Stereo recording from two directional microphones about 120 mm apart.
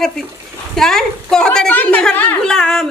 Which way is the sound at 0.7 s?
5° left (ahead or behind).